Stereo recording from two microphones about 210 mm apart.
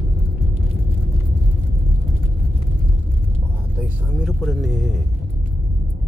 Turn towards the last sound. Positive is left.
turn(degrees=0)  # may be behind; listen again after turning